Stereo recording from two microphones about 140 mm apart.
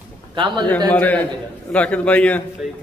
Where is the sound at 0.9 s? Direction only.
10° left (ahead or behind).